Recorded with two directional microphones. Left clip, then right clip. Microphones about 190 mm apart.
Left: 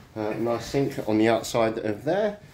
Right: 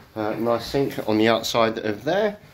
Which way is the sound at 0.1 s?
Centre (ahead or behind).